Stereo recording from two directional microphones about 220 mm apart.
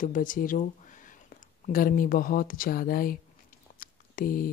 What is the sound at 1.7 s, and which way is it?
Speech, 40° left (ahead or behind).